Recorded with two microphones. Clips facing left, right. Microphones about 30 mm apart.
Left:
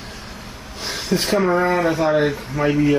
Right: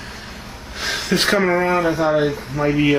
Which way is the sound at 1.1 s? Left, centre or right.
Right.